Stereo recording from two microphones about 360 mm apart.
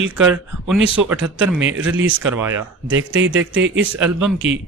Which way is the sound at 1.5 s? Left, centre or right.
Right.